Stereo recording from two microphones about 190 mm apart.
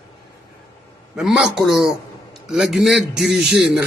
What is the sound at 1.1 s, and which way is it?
A man's voice, 5° right (ahead or behind).